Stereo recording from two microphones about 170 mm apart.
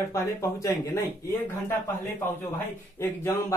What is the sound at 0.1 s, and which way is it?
Speech, 15° left (ahead or behind).